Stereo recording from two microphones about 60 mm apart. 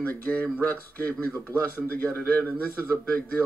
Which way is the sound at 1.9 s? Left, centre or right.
Left.